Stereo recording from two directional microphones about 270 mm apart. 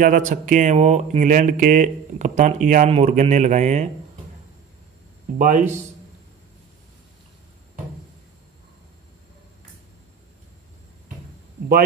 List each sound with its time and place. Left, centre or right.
0.0 s speech: right
5.4 s speech: right